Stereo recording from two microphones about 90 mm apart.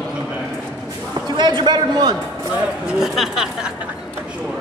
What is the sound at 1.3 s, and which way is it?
Speech, 55° right (ahead or behind).